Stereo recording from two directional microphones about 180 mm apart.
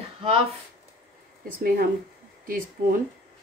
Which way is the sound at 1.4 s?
55° right (ahead or behind).